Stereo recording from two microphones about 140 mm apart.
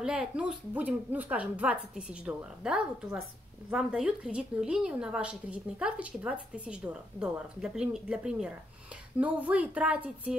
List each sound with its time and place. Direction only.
0.0 s a woman's voice: 5° right (ahead or behind)